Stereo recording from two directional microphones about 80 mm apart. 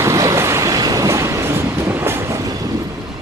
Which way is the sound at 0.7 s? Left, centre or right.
Right.